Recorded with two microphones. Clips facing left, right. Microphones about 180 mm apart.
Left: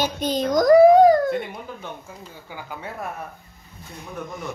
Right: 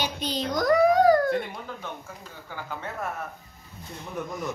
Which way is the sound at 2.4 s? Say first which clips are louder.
Even; 10° left (ahead or behind).